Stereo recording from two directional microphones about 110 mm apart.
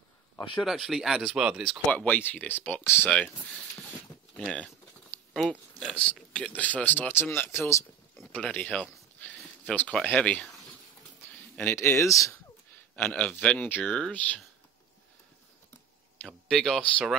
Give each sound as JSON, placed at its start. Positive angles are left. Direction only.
{"t": 0.6, "sound": "speech", "side_deg": 0}
{"t": 1.9, "sound": "speech", "side_deg": 15}
{"t": 4.3, "sound": "speech", "side_deg": 5}
{"t": 9.2, "sound": "a sound", "side_deg": 15}
{"t": 10.0, "sound": "speech", "side_deg": 15}
{"t": 11.6, "sound": "speech", "side_deg": 20}
{"t": 12.9, "sound": "speech", "side_deg": 10}
{"t": 16.2, "sound": "speech", "side_deg": 5}